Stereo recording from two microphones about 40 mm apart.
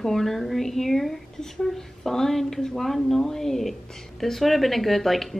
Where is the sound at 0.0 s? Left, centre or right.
Centre.